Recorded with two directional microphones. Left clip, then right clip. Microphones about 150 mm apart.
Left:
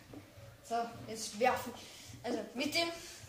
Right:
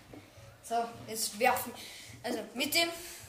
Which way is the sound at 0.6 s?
Centre (ahead or behind).